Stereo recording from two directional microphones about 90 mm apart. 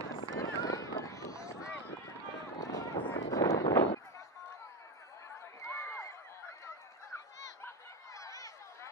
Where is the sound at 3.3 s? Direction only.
40° left (ahead or behind).